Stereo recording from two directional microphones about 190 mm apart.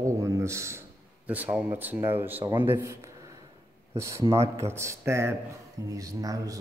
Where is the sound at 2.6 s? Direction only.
15° right (ahead or behind).